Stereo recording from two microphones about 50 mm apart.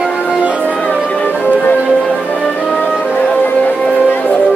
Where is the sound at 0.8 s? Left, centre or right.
Left.